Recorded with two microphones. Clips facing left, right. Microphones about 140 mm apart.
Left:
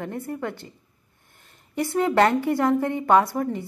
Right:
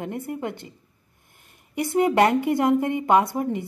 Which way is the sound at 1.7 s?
15° right (ahead or behind).